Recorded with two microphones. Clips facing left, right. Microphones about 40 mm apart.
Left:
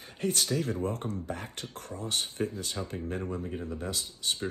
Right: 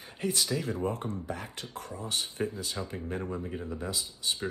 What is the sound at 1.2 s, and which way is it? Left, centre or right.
Beatboxing, left.